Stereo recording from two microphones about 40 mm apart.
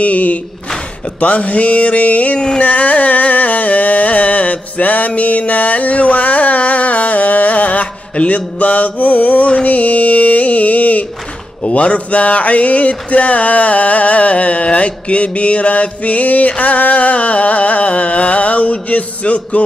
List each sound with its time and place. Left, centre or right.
0.0 s mantra: left
2.6 s music: left
8.5 s mantra: left